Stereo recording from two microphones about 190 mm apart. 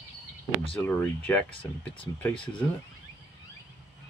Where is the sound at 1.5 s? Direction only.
25° left (ahead or behind).